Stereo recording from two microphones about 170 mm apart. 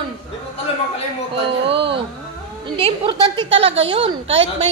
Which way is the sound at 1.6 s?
30° right (ahead or behind).